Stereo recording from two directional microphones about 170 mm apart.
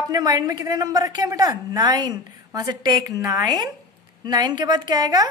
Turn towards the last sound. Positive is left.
turn(degrees=-25)  # may be behind; listen again after turning